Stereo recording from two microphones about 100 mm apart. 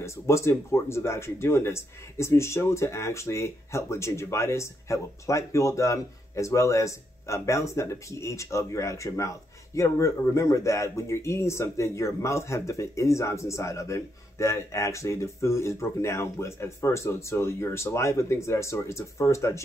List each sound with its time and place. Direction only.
0.0 s speech: 25° left (ahead or behind)